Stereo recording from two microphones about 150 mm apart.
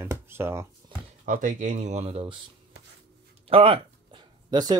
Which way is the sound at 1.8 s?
45° right (ahead or behind).